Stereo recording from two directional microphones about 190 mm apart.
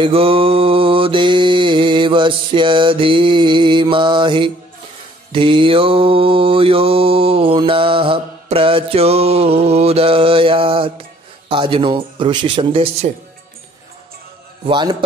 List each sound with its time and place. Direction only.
0.0 s mantra: 30° right (ahead or behind)
14.6 s mantra: 25° right (ahead or behind)